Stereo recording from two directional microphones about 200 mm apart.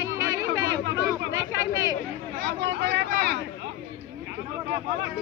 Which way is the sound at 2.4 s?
60° right (ahead or behind).